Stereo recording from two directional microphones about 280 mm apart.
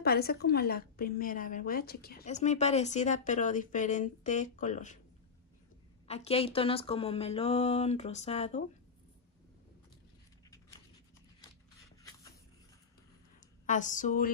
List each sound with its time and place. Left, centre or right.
0.0 s a woman's voice: left
6.0 s a woman's voice: left
12.0 s a sound: centre
13.7 s a woman's voice: left